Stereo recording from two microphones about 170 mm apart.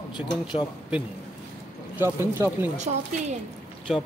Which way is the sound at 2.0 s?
15° right (ahead or behind).